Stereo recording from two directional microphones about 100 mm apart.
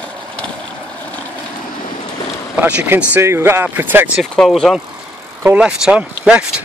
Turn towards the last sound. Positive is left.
turn(degrees=-10)  # may be behind; listen again after turning